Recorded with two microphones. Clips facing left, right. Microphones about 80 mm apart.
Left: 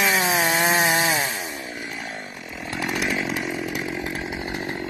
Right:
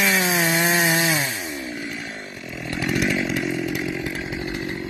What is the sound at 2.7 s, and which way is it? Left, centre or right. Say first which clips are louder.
Chainsaw: right 3 dB; centre.